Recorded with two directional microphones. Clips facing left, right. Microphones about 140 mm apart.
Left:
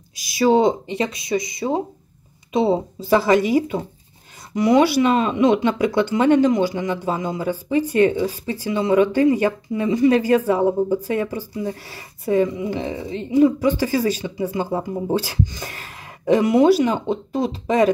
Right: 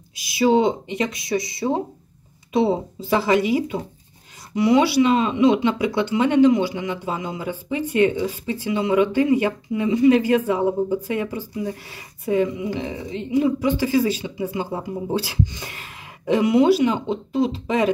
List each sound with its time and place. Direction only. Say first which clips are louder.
0.1 s speech: left 1 dB; 40° left (ahead or behind); by 2.8 s 25° left (ahead or behind)
3.0 s speech: left 3 dB; 40° left (ahead or behind)